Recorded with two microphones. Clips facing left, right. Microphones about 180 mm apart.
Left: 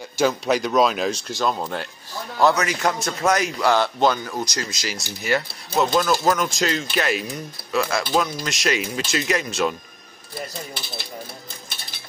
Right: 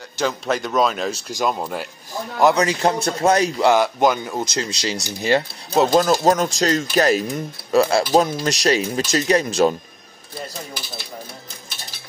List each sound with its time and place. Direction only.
0.2 s a man's voice: 5° left (ahead or behind)
1.1 s speech: 10° right (ahead or behind)
2.5 s speech: 30° right (ahead or behind)
3.7 s speech: 15° right (ahead or behind); by 9.8 s 40° right (ahead or behind)